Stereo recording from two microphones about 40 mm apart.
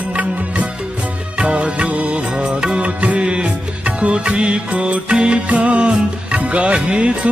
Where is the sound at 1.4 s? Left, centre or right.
Right.